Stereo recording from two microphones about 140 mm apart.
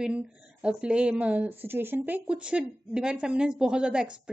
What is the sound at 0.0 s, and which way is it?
Speech, 5° right (ahead or behind).